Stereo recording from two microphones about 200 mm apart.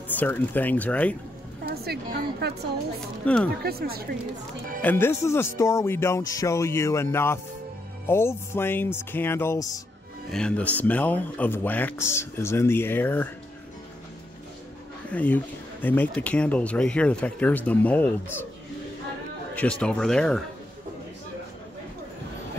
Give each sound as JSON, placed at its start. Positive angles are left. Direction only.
{"t": 0.2, "sound": "speech", "side_deg": 10}
{"t": 1.9, "sound": "a woman's voice", "side_deg": -50}
{"t": 3.3, "sound": "speech", "side_deg": 5}
{"t": 3.6, "sound": "speech", "side_deg": -50}
{"t": 4.8, "sound": "speech", "side_deg": 10}
{"t": 15.0, "sound": "speech", "side_deg": 10}
{"t": 19.5, "sound": "speech", "side_deg": 5}